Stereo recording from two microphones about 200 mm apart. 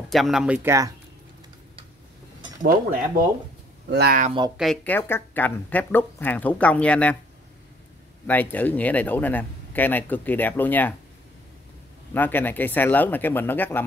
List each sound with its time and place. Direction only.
0.1 s speech: centre (ahead or behind)
2.6 s speech: 45° right (ahead or behind)
4.6 s a man's voice: 5° left (ahead or behind)
8.3 s a man's voice: 10° left (ahead or behind)
12.1 s a man's voice: 10° left (ahead or behind)